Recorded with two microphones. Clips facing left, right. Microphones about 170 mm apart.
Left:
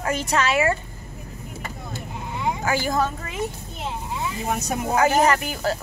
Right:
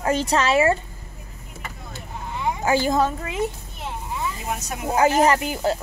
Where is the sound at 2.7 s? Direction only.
25° right (ahead or behind).